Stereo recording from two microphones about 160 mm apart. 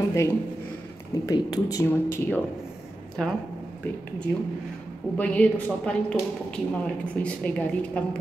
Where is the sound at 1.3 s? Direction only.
20° left (ahead or behind).